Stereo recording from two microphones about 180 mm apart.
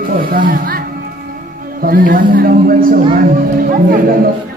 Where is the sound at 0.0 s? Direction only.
50° right (ahead or behind).